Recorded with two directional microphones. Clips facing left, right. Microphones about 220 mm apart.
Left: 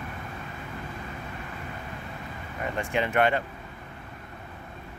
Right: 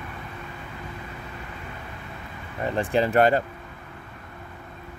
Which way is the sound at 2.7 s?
35° right (ahead or behind).